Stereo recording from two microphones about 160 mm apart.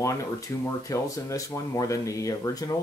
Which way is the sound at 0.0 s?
20° left (ahead or behind).